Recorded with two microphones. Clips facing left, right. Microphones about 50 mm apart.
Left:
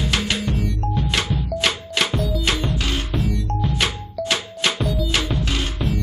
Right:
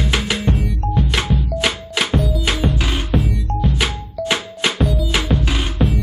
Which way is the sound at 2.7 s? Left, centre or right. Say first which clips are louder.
Right 2 dB; centre.